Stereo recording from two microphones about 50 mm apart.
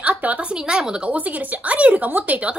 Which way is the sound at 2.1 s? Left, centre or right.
Right.